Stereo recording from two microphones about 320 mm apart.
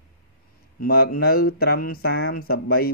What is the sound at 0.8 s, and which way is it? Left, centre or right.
Speech, left.